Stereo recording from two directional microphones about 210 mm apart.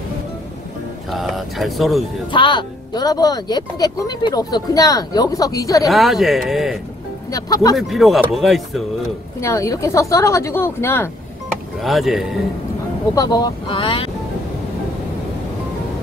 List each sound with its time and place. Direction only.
1.1 s speech: centre (ahead or behind)
2.3 s speech: 20° left (ahead or behind)
5.9 s speech: centre (ahead or behind)
7.2 s speech: 15° left (ahead or behind)
7.7 s speech: centre (ahead or behind)
9.4 s speech: 15° left (ahead or behind)
11.8 s speech: centre (ahead or behind)
13.1 s speech: 20° left (ahead or behind)